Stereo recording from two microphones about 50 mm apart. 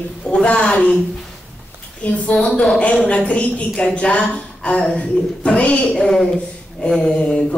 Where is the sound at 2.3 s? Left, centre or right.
Centre.